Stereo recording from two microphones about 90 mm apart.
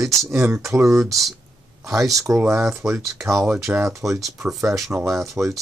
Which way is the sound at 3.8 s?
35° right (ahead or behind).